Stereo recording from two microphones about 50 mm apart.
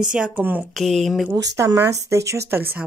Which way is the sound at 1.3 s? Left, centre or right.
Right.